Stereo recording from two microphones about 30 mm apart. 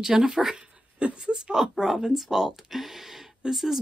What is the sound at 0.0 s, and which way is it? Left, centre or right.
Speech, centre.